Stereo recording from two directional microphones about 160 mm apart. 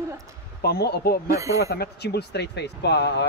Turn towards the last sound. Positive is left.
turn(degrees=90)